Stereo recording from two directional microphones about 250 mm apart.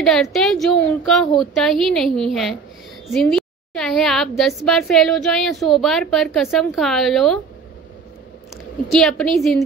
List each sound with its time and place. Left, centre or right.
0.0 s a woman's voice: centre
8.8 s a woman's voice: centre